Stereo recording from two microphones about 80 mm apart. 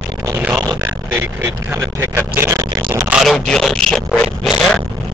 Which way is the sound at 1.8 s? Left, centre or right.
Right.